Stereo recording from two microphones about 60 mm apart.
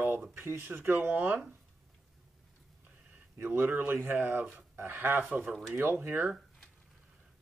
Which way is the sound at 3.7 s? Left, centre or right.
Right.